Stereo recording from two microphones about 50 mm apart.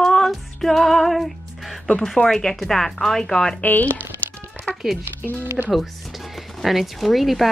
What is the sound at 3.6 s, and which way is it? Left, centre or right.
Speech, left.